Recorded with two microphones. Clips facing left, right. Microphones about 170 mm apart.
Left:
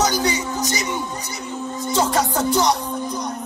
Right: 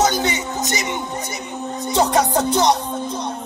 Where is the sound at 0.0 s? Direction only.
25° right (ahead or behind).